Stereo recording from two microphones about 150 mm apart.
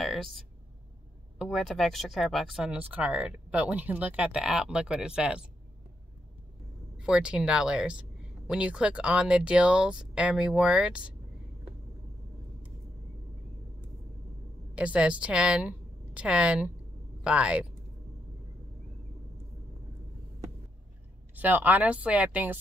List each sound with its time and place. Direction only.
0.0 s speech: centre (ahead or behind)
7.0 s speech: 5° right (ahead or behind)
14.8 s a woman's voice: 10° right (ahead or behind)
21.4 s speech: 10° right (ahead or behind)